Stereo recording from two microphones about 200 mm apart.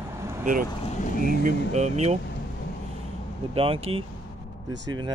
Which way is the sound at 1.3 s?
45° right (ahead or behind).